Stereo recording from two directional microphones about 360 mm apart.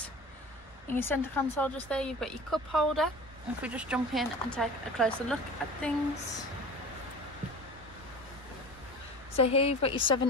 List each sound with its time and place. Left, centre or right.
0.9 s speech: centre
9.4 s a woman's voice: centre